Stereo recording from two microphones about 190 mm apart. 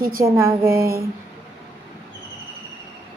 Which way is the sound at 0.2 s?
15° right (ahead or behind).